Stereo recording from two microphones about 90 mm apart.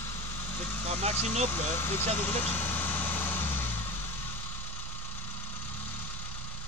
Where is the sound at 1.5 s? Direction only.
25° left (ahead or behind).